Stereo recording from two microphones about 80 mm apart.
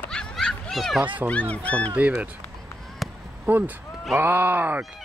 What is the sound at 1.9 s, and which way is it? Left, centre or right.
Speech, centre.